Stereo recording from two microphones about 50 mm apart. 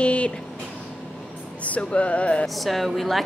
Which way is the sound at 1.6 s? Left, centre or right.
Left.